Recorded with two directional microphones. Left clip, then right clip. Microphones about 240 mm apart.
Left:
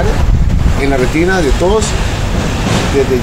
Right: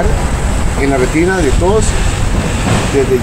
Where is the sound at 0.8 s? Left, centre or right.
Centre.